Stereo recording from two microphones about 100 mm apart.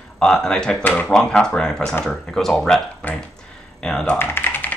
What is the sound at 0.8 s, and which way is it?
Speech, 15° left (ahead or behind).